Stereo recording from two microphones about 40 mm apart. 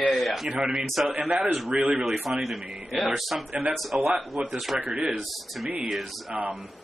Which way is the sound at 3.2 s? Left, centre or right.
Centre.